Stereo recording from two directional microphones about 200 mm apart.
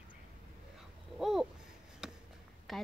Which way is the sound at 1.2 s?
Centre (ahead or behind).